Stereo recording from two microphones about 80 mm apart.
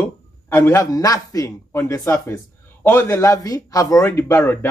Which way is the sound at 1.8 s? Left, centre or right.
Left.